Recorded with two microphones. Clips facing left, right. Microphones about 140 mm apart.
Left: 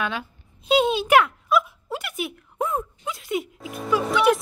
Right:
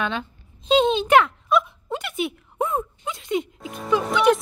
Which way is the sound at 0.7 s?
10° left (ahead or behind).